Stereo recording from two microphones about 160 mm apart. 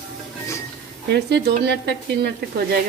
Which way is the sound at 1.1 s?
90° right.